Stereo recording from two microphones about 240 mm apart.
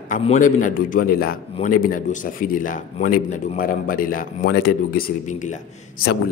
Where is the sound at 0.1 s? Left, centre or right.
Left.